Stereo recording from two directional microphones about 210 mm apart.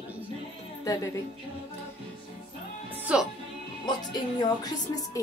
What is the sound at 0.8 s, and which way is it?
Speech, 15° left (ahead or behind).